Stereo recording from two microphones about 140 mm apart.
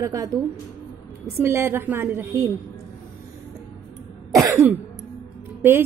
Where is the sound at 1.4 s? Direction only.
15° right (ahead or behind).